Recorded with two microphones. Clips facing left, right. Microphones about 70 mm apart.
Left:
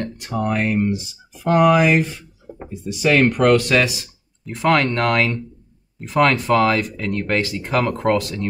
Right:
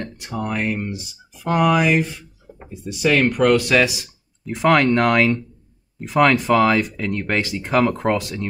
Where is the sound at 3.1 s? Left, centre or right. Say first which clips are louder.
Left 1 dB; centre.